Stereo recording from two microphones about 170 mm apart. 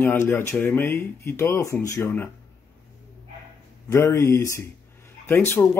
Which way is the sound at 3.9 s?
15° left (ahead or behind).